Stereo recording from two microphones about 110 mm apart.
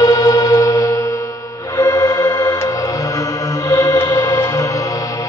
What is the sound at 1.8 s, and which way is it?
Music, 30° left (ahead or behind).